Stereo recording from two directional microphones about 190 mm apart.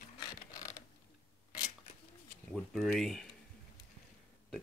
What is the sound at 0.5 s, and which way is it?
Mechanisms, 20° left (ahead or behind).